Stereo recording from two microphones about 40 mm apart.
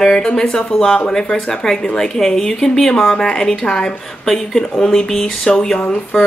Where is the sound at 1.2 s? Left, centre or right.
Left.